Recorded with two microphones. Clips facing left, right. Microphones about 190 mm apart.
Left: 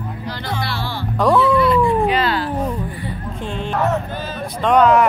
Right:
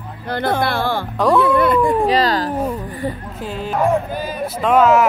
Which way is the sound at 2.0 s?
35° right (ahead or behind).